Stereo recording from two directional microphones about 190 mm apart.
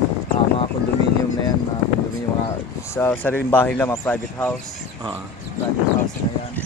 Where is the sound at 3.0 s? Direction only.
10° left (ahead or behind).